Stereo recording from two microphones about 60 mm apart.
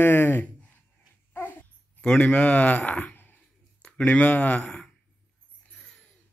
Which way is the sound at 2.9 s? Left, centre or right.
Left.